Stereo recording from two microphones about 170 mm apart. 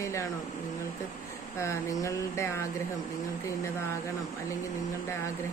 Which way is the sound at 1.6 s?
20° left (ahead or behind).